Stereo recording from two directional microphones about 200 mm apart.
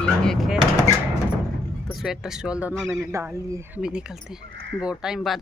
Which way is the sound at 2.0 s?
Centre (ahead or behind).